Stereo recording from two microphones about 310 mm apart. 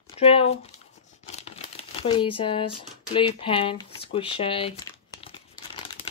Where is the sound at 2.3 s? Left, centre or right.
Centre.